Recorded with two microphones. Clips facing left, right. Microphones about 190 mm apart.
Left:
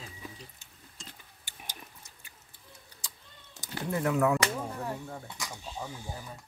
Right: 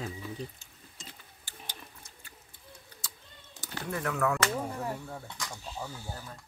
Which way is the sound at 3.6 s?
20° left (ahead or behind).